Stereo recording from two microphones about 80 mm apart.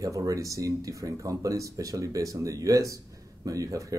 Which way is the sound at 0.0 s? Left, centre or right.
Right.